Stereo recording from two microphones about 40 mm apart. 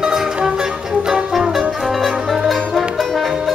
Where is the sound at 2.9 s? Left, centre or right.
Centre.